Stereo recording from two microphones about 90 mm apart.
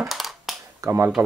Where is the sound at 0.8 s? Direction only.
30° right (ahead or behind).